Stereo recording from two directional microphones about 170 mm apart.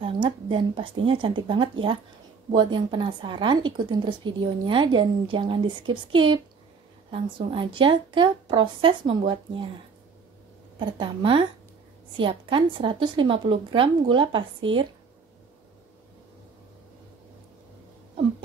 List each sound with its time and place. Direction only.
0.0 s a woman's voice: 30° right (ahead or behind)
10.8 s a woman's voice: 30° right (ahead or behind)